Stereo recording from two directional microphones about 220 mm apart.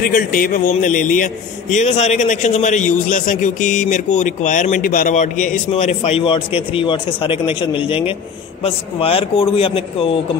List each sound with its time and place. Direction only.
0.0 s a man's voice: 40° left (ahead or behind)